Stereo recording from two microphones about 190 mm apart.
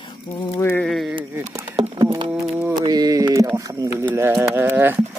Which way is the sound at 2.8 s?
20° right (ahead or behind).